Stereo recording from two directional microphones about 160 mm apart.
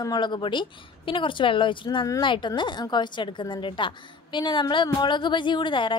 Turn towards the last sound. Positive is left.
turn(degrees=30)  # may be behind; listen again after turning